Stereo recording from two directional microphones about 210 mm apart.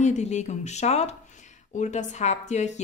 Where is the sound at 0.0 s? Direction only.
35° left (ahead or behind).